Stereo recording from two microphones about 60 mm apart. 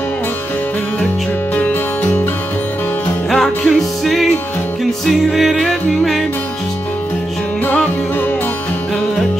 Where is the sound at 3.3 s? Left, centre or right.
Centre.